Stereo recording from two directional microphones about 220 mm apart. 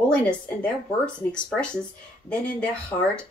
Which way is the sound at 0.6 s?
5° left (ahead or behind).